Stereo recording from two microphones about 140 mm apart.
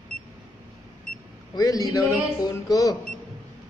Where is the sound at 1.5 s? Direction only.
25° left (ahead or behind).